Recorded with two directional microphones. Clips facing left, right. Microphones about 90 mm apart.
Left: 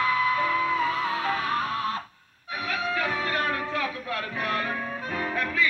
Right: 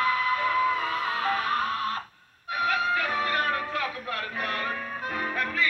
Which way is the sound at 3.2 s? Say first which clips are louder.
Even; 25° left (ahead or behind).